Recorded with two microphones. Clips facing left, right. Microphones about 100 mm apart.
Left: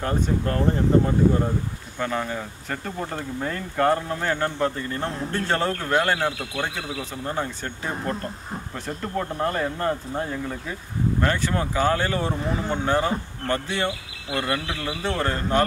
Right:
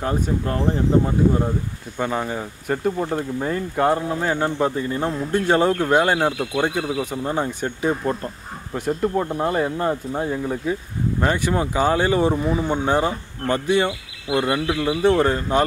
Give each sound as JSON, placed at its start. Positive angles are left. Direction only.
{"t": 0.0, "sound": "speech", "side_deg": -10}
{"t": 2.0, "sound": "speech", "side_deg": -15}